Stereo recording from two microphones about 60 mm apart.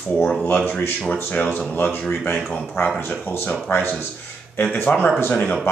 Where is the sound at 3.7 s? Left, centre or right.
Left.